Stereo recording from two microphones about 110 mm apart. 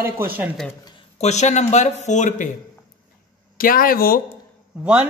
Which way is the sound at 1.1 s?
90° left.